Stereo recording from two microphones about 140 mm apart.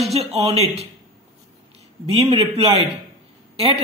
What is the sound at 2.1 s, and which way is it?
Speech, 45° right (ahead or behind).